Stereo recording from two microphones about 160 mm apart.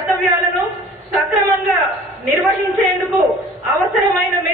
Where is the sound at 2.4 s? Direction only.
Centre (ahead or behind).